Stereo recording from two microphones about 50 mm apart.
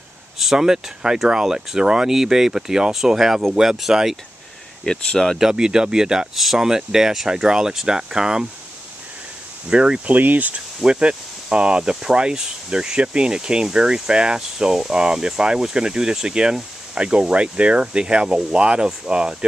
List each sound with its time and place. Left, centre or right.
0.4 s speech: centre
4.8 s speech: centre
5.4 s speech: centre
9.7 s speech: centre
10.0 s speech: right
10.8 s speech: centre